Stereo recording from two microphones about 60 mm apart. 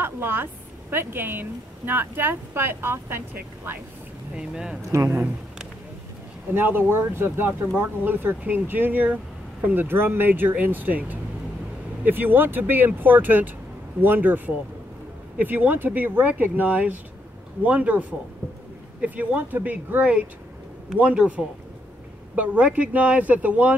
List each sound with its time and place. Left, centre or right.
0.0 s a woman's voice: right
4.4 s speech: centre
6.5 s a woman's voice: right
9.8 s a woman's voice: right